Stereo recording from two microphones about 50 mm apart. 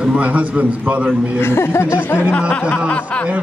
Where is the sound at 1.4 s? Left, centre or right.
Left.